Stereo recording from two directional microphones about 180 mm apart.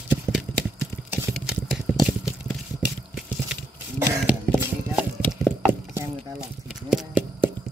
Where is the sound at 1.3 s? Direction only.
Centre (ahead or behind).